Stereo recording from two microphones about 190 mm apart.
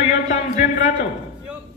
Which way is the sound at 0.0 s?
40° left (ahead or behind).